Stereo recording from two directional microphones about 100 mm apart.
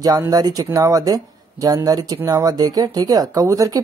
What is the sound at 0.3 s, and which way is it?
Speech, 40° right (ahead or behind).